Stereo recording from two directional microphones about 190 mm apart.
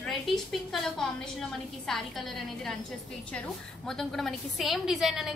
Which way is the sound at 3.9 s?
Centre (ahead or behind).